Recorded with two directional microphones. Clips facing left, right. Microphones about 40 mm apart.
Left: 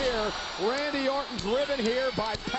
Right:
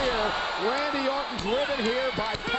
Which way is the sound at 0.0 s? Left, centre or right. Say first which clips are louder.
Right 3 dB; right.